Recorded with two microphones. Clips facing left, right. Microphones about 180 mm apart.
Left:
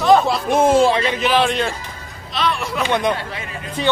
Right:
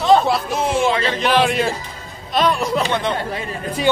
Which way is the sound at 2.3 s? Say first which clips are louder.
Right 4 dB; 45° right (ahead or behind).